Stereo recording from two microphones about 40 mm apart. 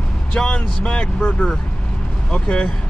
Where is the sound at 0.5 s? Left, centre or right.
Left.